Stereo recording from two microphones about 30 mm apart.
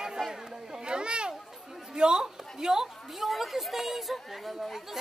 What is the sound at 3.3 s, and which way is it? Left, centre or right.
Chatter, centre.